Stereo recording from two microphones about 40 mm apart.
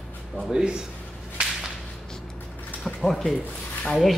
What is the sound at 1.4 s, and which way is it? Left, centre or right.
Whip, centre.